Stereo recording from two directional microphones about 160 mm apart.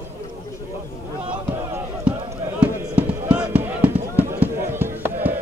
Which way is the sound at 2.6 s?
10° right (ahead or behind).